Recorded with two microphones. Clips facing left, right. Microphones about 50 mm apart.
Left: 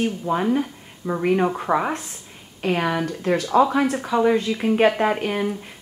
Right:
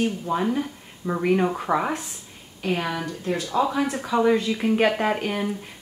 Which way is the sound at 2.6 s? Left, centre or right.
Left.